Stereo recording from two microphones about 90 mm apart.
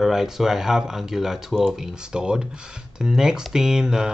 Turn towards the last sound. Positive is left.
turn(degrees=-10)  # may be behind; listen again after turning